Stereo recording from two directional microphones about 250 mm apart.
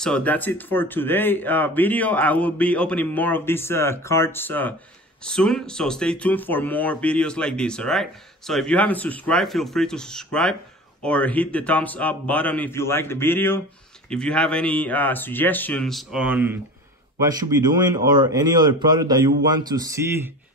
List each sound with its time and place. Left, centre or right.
0.0 s a man's voice: centre